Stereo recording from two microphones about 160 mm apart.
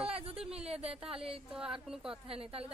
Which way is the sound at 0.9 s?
5° right (ahead or behind).